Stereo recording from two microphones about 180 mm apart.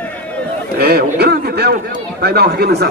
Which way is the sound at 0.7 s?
65° right (ahead or behind).